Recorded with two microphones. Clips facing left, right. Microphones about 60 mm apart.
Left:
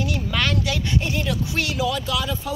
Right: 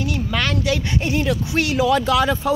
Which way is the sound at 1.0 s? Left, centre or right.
Centre.